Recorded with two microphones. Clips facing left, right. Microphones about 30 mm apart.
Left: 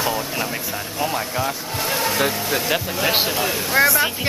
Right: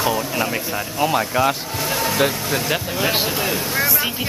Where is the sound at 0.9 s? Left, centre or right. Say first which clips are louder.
Right 5 dB; centre.